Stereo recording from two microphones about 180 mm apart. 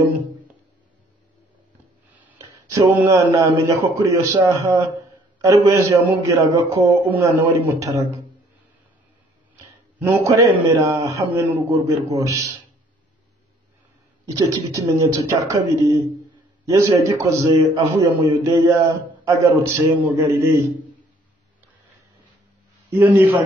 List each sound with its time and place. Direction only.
2.2 s a man's voice: 20° right (ahead or behind)
10.0 s a man's voice: 15° right (ahead or behind)
14.3 s a man's voice: 15° right (ahead or behind)
22.8 s a man's voice: 15° right (ahead or behind)